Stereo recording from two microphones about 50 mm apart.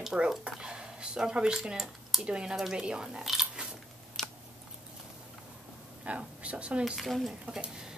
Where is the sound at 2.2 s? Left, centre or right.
Centre.